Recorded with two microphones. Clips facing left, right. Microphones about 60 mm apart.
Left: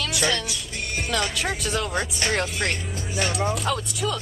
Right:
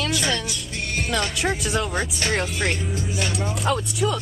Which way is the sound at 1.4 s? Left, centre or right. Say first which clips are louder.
Right 3 dB; centre.